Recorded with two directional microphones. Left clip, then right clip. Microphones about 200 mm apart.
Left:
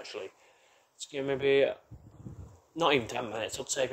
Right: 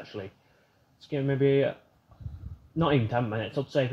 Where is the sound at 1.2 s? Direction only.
15° left (ahead or behind).